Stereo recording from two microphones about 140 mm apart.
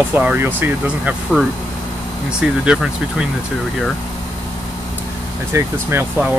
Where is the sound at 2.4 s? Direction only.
5° right (ahead or behind).